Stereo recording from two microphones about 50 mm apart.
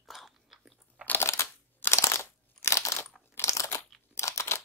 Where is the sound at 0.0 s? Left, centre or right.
Centre.